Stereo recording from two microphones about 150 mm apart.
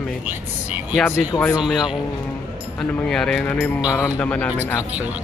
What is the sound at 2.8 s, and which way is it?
Speech, 5° left (ahead or behind).